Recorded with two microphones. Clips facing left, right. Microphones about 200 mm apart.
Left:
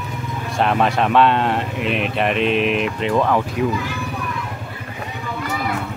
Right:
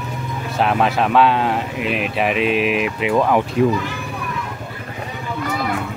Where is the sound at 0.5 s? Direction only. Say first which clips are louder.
Even; centre (ahead or behind).